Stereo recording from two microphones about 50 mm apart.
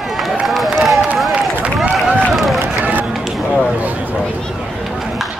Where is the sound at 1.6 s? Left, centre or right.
Right.